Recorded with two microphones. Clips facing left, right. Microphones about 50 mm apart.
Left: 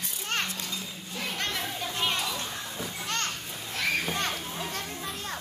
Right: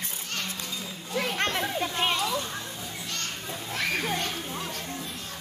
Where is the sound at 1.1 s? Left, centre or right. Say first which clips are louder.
Right 6 dB; right.